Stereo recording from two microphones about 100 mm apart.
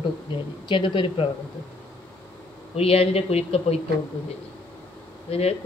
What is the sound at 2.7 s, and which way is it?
Speech, 75° left (ahead or behind).